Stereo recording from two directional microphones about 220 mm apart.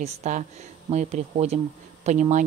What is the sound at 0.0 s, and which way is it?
Speech, 30° right (ahead or behind).